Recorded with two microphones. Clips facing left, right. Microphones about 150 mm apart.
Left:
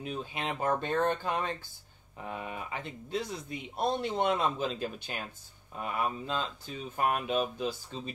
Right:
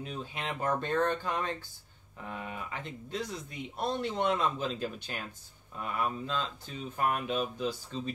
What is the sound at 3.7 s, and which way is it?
Speech, 35° left (ahead or behind).